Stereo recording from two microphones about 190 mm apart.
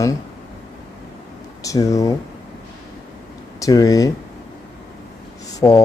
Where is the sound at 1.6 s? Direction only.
15° left (ahead or behind).